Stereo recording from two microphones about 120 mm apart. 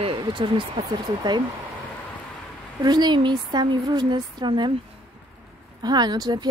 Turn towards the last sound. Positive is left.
turn(degrees=-35)  # may be behind; listen again after turning